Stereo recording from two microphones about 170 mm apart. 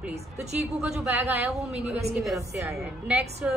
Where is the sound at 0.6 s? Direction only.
5° right (ahead or behind).